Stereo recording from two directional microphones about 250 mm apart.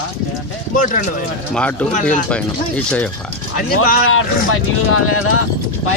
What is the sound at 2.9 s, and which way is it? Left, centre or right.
Speech, centre.